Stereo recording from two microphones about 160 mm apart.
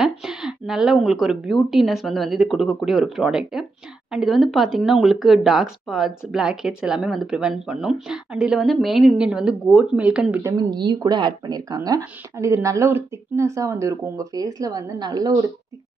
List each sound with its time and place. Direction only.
0.0 s speech: 5° right (ahead or behind)
10.4 s speech: 25° right (ahead or behind)